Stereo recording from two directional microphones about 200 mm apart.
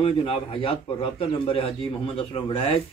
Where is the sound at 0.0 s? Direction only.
25° left (ahead or behind).